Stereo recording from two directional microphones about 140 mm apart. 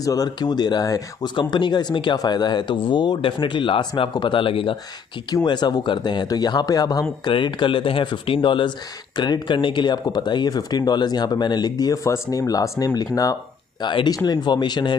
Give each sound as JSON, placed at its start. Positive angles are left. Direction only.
{"t": 0.0, "sound": "speech", "side_deg": 25}